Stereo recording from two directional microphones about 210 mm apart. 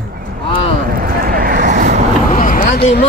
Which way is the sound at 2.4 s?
40° left (ahead or behind).